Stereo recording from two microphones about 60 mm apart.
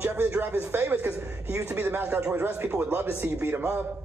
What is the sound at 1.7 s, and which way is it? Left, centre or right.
Speech, right.